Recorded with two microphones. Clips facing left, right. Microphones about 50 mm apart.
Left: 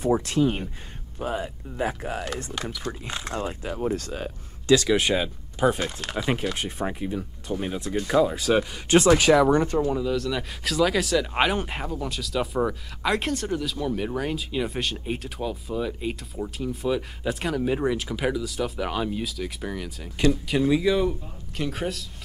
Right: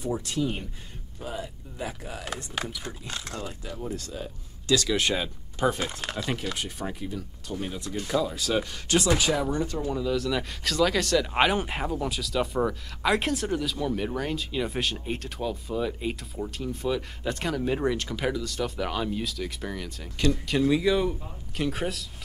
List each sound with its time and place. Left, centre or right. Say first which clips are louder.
0.0 s speech: left 7 dB; left
2.5 s speech: left 1 dB; centre
3.1 s speech: left 5 dB; left
3.8 s speech: left 7 dB; left
4.6 s speech: left 5 dB; left
5.9 s speech: left 1 dB; centre
6.1 s speech: left 7 dB; centre; by 9.1 s left
9.2 s speech: left 8 dB; left
9.8 s speech: left 3 dB; centre
10.1 s speech: even; centre